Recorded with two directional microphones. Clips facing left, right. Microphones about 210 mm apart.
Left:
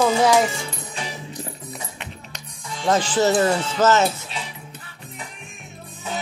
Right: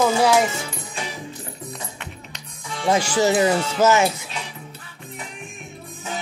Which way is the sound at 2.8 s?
10° right (ahead or behind).